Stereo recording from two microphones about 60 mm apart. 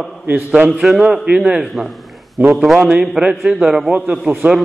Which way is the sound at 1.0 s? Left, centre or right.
Centre.